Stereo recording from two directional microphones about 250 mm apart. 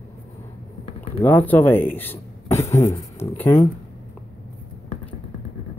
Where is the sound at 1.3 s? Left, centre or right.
Centre.